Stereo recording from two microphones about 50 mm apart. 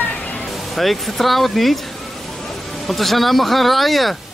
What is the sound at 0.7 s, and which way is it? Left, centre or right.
Speech, centre.